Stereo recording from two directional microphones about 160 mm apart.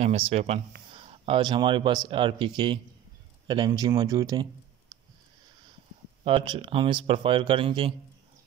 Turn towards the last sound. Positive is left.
turn(degrees=-30)  # may be behind; listen again after turning